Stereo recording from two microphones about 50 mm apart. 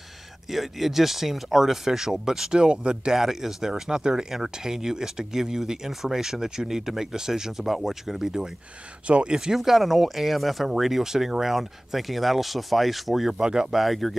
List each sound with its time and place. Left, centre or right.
0.5 s speech: centre
3.2 s speech: centre
9.0 s speech: right
9.5 s speech: centre